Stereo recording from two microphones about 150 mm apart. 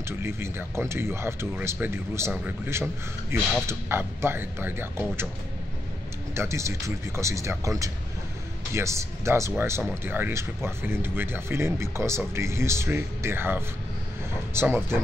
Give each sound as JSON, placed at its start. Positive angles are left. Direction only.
{"t": 0.2, "sound": "speech", "side_deg": -15}
{"t": 6.3, "sound": "speech", "side_deg": -20}
{"t": 8.7, "sound": "speech", "side_deg": -20}